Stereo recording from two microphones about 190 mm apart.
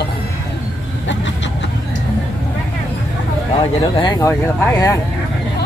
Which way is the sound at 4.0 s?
20° left (ahead or behind).